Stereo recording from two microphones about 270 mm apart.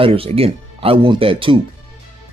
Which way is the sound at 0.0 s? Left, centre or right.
Right.